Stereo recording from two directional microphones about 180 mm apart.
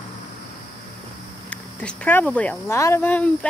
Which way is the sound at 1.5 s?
5° left (ahead or behind).